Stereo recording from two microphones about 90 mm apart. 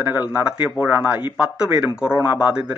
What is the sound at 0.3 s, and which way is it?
Speech, 15° right (ahead or behind).